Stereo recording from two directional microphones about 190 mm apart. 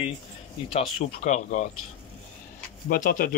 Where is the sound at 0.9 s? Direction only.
40° left (ahead or behind).